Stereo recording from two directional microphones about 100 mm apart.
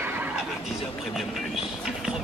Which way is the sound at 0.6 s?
Centre (ahead or behind).